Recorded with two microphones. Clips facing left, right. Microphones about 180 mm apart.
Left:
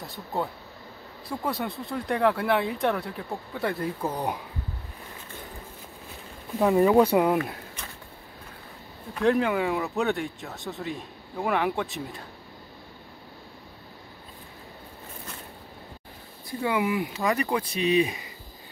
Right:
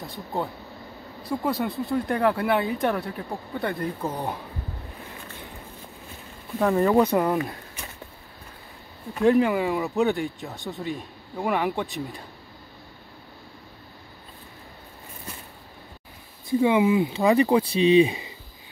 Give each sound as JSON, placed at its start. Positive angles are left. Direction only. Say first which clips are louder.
{"t": 0.0, "sound": "speech", "louder": "right 1 dB", "side_deg": 0}
{"t": 4.0, "sound": "speech", "louder": "even", "side_deg": 15}
{"t": 6.6, "sound": "speech", "louder": "left 1 dB", "side_deg": 10}
{"t": 9.1, "sound": "speech", "louder": "right 3 dB", "side_deg": 0}
{"t": 16.4, "sound": "speech", "louder": "right 7 dB", "side_deg": -20}